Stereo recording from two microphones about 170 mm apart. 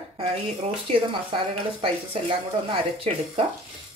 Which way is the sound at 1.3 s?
30° right (ahead or behind).